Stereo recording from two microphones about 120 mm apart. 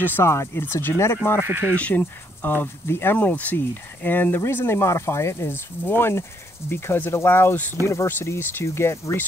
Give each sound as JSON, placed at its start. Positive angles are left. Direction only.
{"t": 0.0, "sound": "speech", "side_deg": 20}
{"t": 1.4, "sound": "speech", "side_deg": -15}
{"t": 1.8, "sound": "speech", "side_deg": 15}